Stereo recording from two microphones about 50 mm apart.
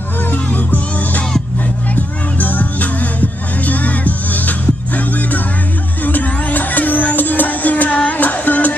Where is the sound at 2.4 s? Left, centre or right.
Left.